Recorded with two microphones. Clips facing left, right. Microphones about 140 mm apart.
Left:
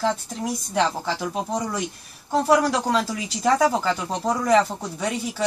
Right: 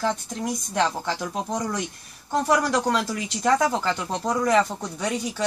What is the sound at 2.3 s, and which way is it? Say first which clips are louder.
Speech: left 2 dB; 5° left (ahead or behind).